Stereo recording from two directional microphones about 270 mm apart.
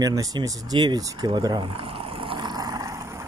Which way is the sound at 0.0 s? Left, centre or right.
Centre.